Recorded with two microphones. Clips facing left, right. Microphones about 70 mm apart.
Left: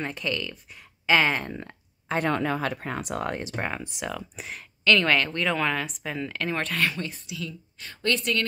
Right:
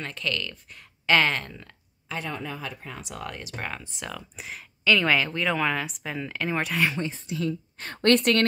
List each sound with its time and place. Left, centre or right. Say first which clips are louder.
0.0 s speech: left 1 dB; centre
1.5 s a sound: left 8 dB; left
2.1 s speech: left 8 dB; left
3.6 s speech: left 3 dB; centre
4.0 s speech: left 4 dB; centre
6.9 s speech: right 3 dB; right
7.2 s speech: right 7 dB; right
7.9 s a woman's voice: right 6 dB; right